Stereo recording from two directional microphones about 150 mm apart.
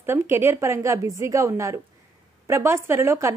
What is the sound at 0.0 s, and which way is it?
Speech, 15° right (ahead or behind).